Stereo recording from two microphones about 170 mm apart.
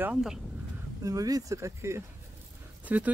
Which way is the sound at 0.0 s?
5° right (ahead or behind).